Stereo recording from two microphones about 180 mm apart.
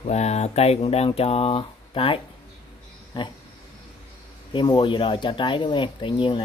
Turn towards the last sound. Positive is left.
turn(degrees=25)  # may be behind; listen again after turning